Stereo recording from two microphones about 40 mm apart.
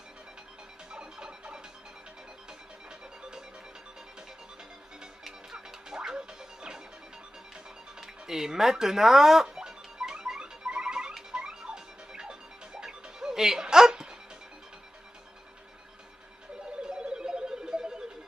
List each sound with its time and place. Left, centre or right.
0.9 s music: right
5.2 s music: centre
8.0 s speech: centre
9.6 s music: centre
16.8 s telephone: centre